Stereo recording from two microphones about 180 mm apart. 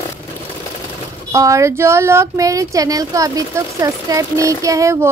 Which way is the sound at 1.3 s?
15° right (ahead or behind).